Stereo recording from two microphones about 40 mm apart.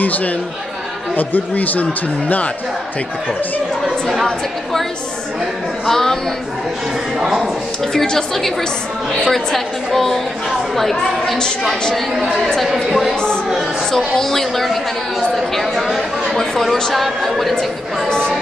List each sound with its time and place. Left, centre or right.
0.0 s speech: left
3.8 s speech: centre
5.9 s a woman's voice: centre
7.2 s speech: centre
7.8 s a woman's voice: centre
13.9 s a woman's voice: centre